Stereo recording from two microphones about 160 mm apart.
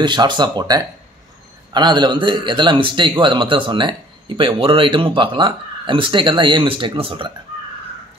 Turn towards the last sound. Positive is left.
turn(degrees=-35)  # may be behind; listen again after turning